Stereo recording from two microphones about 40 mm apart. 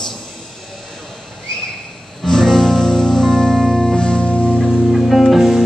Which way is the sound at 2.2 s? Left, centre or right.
Centre.